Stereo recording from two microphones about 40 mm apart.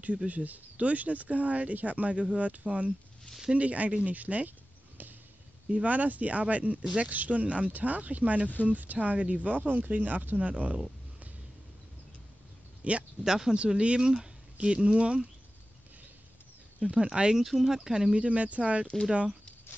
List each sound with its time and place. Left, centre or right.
0.3 s speech: right
9.6 s speech: right
10.3 s speech: right
12.8 s speech: right
13.2 s speech: centre
13.6 s speech: right
16.8 s speech: right
17.4 s speech: centre
18.1 s speech: right